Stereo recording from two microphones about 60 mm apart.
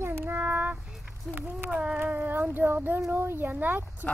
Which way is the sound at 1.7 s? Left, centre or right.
Centre.